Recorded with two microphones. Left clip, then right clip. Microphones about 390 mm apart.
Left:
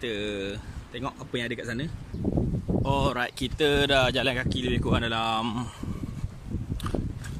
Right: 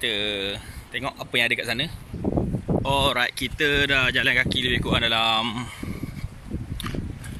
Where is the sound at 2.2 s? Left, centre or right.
Right.